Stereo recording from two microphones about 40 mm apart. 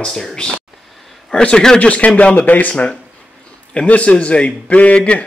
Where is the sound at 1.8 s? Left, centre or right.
Left.